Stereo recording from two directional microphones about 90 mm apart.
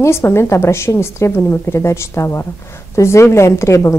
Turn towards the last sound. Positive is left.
turn(degrees=35)  # may be behind; listen again after turning